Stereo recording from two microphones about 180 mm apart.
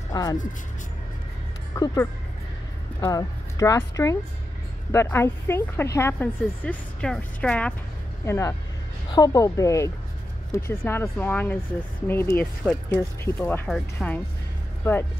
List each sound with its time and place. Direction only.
0.1 s speech: 20° left (ahead or behind)
1.8 s a woman's voice: 15° left (ahead or behind)
3.0 s a woman's voice: 20° left (ahead or behind)